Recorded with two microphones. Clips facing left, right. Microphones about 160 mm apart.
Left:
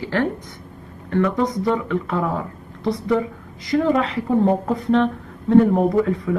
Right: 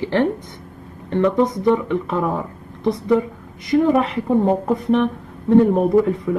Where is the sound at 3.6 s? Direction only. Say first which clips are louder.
Right 3 dB; 20° right (ahead or behind).